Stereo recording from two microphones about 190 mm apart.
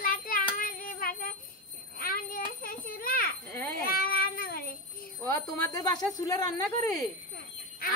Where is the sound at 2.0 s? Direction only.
50° left (ahead or behind).